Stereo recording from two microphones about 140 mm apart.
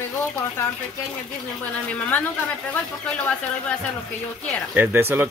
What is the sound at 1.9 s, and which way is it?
Speech, 10° left (ahead or behind).